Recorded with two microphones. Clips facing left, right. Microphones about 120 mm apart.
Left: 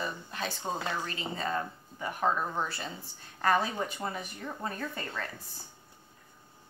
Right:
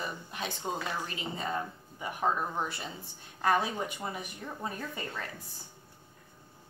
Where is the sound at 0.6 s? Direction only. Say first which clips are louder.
Even; 25° left (ahead or behind).